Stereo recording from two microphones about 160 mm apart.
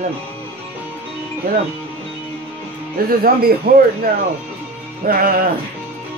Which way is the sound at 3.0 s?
70° right (ahead or behind).